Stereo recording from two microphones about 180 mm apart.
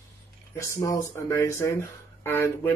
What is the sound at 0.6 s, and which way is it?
Speech, 15° left (ahead or behind).